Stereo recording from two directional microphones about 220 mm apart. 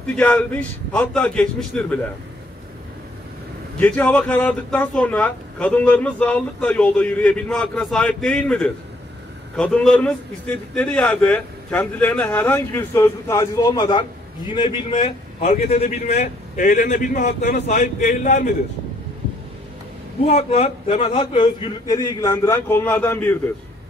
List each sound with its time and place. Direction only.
0.1 s speech: 5° left (ahead or behind)
3.8 s a man's voice: 5° left (ahead or behind); by 18.5 s 35° left (ahead or behind)
20.2 s a man's voice: 30° left (ahead or behind); by 23.4 s 10° left (ahead or behind)